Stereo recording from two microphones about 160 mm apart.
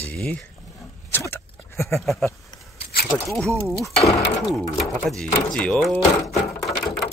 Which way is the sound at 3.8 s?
Centre (ahead or behind).